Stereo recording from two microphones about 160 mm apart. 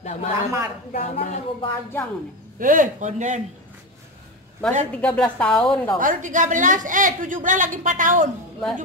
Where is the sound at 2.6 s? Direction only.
55° right (ahead or behind).